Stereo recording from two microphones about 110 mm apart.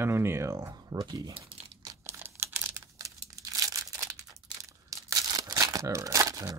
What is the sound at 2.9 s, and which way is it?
Crumpling, 30° right (ahead or behind).